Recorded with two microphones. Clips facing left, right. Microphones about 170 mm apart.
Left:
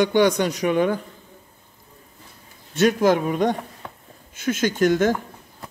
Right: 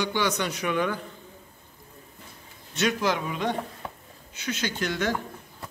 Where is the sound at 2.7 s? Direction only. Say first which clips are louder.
Left 8 dB; 50° left (ahead or behind).